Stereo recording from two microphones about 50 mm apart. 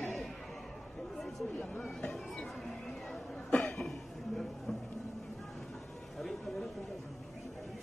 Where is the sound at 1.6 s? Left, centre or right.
Left.